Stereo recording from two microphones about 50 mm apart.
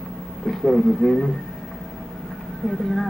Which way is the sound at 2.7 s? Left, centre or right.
Centre.